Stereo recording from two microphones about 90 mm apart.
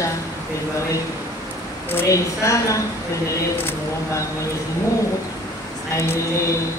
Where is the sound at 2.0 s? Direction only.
35° left (ahead or behind).